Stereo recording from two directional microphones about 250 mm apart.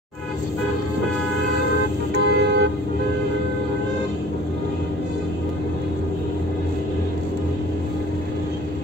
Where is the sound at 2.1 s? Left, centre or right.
Right.